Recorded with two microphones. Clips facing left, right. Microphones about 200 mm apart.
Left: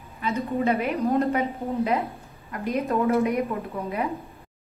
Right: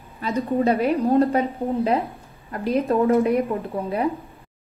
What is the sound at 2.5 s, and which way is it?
Speech, 30° right (ahead or behind).